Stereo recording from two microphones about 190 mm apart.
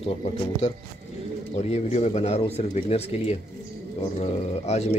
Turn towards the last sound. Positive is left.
turn(degrees=35)  # may be behind; listen again after turning